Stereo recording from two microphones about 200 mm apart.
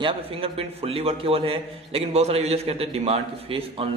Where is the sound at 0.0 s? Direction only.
30° right (ahead or behind).